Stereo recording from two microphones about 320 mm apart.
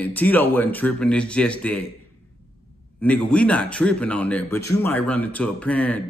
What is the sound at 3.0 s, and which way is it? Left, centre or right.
Speech, centre.